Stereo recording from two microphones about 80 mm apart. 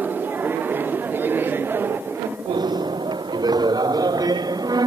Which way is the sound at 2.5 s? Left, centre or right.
Right.